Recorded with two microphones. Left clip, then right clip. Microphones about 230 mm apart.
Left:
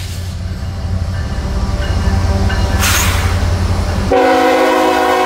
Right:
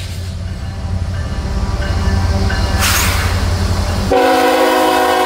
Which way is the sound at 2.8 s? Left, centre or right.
Centre.